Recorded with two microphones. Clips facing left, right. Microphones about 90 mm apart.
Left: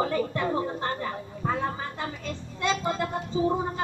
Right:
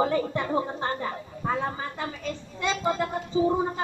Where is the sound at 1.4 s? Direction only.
15° right (ahead or behind).